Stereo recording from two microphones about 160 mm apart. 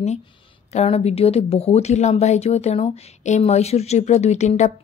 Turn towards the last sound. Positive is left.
turn(degrees=45)  # may be behind; listen again after turning